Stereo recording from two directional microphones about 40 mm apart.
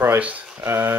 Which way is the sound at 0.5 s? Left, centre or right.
Right.